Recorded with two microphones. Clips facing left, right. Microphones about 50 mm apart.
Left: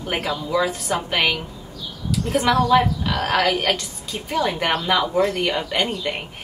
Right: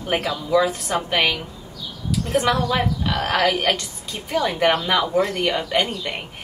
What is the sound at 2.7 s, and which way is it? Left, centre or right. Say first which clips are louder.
A woman's voice: left 4 dB; centre.